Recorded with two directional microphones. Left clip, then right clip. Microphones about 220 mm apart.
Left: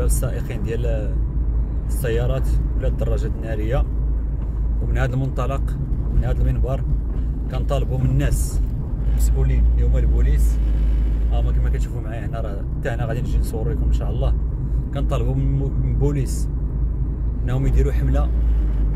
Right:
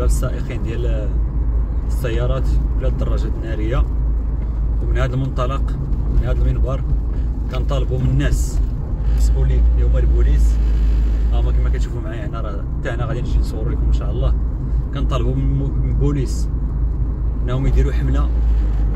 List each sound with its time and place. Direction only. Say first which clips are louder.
0.0 s speech: right 2 dB; 20° left (ahead or behind)
4.9 s speech: right 2 dB; 20° left (ahead or behind)
7.7 s speech: even; 20° left (ahead or behind)
12.4 s speech: right 1 dB; 20° left (ahead or behind)
15.0 s speech: right 2 dB; 15° left (ahead or behind)
17.5 s speech: right 1 dB; 20° left (ahead or behind)